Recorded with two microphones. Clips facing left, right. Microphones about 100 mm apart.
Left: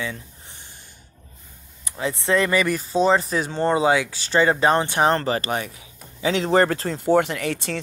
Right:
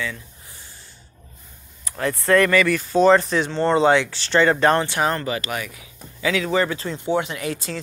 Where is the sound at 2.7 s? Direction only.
35° left (ahead or behind).